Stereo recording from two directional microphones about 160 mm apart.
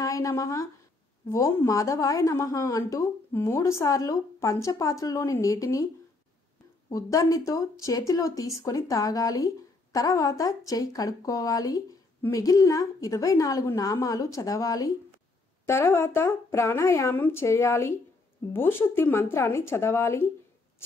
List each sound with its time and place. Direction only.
0.0 s speech: 20° left (ahead or behind)
6.9 s a woman's voice: 20° left (ahead or behind)